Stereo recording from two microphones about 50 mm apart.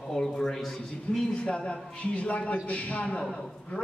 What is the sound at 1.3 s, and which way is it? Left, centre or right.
A man's voice, left.